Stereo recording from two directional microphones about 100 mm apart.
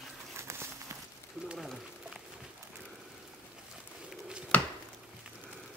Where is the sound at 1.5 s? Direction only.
5° right (ahead or behind).